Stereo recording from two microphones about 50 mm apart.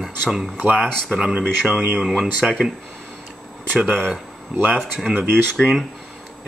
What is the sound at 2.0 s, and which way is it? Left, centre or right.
Speech, centre.